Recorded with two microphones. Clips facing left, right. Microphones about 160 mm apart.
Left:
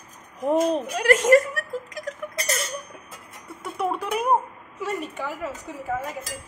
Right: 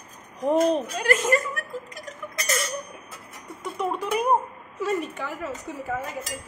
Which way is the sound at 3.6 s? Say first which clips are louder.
Left 1 dB; 5° left (ahead or behind).